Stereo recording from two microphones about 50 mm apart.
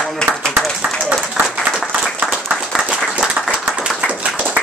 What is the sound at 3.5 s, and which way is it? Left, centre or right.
Clapping, centre.